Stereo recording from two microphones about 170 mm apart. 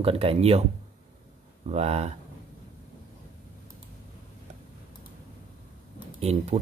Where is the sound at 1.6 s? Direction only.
40° right (ahead or behind).